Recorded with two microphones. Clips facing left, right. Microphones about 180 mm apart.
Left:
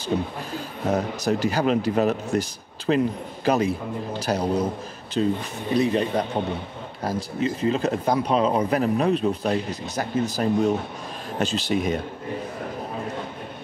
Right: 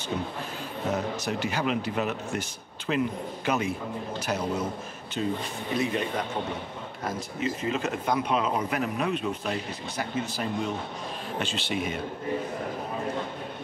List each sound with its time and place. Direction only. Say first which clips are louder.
0.9 s speech: left 8 dB; 40° left (ahead or behind)